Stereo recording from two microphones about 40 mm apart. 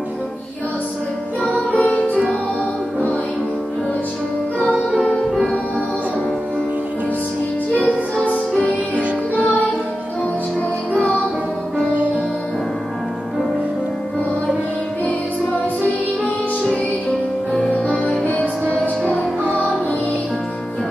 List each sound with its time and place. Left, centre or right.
1.8 s music: left
8.6 s music: right
17.8 s music: left